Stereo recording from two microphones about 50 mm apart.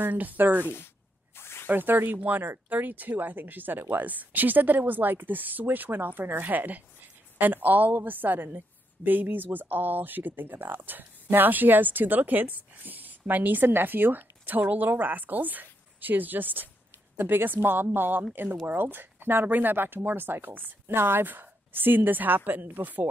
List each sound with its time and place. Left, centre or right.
0.1 s a woman's voice: right
1.3 s snake: left
1.7 s a woman's voice: right